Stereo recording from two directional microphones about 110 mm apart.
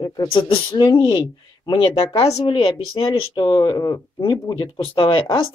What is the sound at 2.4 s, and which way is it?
Speech, 55° left (ahead or behind).